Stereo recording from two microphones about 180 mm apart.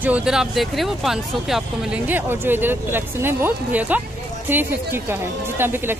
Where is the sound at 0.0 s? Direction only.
5° right (ahead or behind).